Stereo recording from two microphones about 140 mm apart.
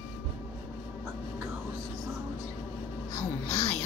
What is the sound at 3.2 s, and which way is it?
Music, 50° left (ahead or behind).